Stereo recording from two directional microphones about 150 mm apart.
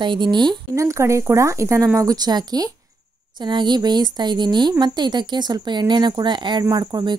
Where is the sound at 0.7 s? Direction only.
20° right (ahead or behind).